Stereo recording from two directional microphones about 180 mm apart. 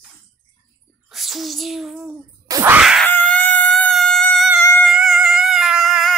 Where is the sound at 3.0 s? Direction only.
10° left (ahead or behind).